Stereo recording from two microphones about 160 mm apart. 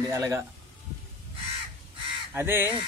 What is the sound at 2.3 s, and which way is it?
Honk, 15° right (ahead or behind).